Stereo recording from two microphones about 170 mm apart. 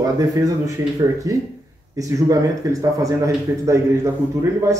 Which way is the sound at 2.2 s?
20° right (ahead or behind).